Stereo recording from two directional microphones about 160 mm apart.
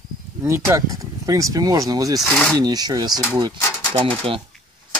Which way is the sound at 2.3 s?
5° left (ahead or behind).